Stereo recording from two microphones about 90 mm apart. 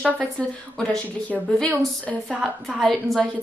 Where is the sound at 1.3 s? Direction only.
5° right (ahead or behind).